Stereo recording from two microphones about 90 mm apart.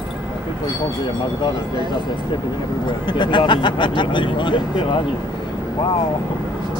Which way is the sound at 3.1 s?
60° left (ahead or behind).